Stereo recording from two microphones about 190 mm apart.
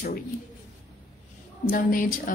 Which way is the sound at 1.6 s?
45° left (ahead or behind).